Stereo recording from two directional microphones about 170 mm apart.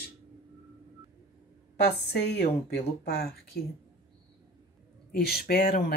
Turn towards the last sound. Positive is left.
turn(degrees=60)  # may be behind; listen again after turning